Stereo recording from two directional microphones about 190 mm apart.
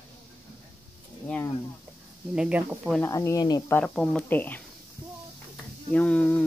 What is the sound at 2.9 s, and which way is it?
Speech, 15° left (ahead or behind).